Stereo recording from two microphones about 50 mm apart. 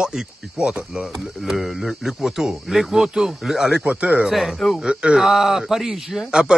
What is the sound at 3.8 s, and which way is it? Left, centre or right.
Speech, right.